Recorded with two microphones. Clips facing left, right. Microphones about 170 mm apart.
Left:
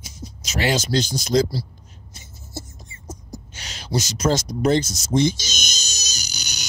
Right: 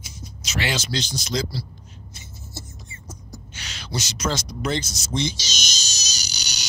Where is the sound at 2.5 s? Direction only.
50° left (ahead or behind).